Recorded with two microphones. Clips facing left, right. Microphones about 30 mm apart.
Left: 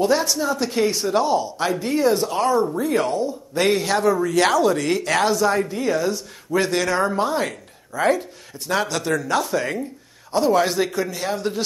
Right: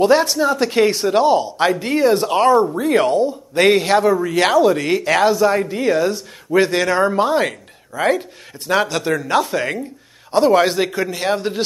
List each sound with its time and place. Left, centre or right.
0.0 s speech: right
10.7 s speech: centre
11.1 s speech: right